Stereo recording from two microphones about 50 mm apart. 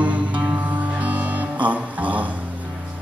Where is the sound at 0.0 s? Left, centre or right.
Right.